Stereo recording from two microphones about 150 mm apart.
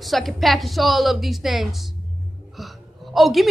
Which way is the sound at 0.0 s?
Centre (ahead or behind).